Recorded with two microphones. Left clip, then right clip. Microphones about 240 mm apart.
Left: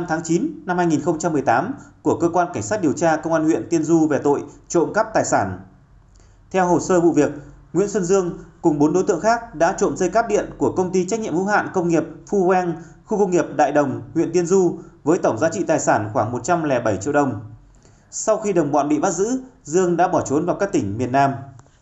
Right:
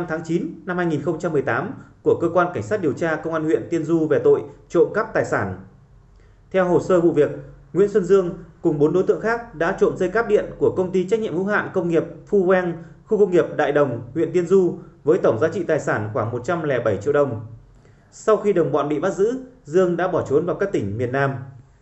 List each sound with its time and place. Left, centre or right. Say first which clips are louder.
0.0 s a man's voice: left 3 dB; left
6.5 s a man's voice: even; left